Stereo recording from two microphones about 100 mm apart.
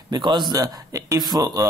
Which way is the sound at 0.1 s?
50° right (ahead or behind).